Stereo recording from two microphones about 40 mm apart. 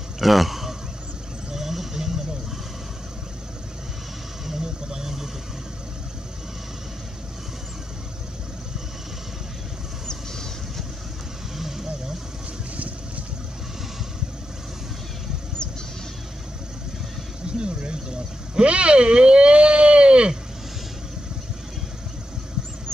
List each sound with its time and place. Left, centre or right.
0.2 s a man's voice: centre
1.5 s vehicle: centre
4.5 s vehicle: centre
11.5 s vehicle: centre
17.5 s a sound: right